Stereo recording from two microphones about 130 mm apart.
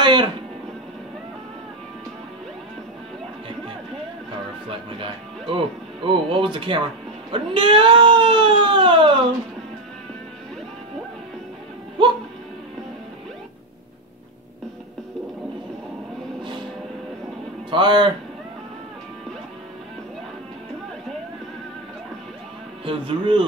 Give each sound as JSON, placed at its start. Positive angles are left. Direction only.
{"t": 0.0, "sound": "a sound", "side_deg": -35}
{"t": 4.6, "sound": "music", "side_deg": -40}
{"t": 6.0, "sound": "speech", "side_deg": -45}
{"t": 17.6, "sound": "speech", "side_deg": -35}
{"t": 22.8, "sound": "speech", "side_deg": -40}